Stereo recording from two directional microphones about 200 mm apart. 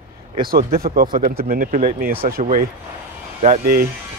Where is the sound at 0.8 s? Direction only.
45° right (ahead or behind).